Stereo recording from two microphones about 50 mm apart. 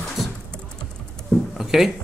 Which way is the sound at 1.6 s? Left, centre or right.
Centre.